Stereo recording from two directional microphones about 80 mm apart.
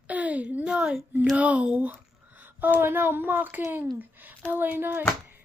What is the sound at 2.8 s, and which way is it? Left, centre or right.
Speech, right.